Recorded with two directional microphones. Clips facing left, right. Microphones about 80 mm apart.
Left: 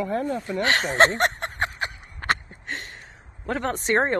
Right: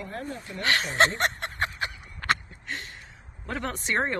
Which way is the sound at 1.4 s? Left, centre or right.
Left.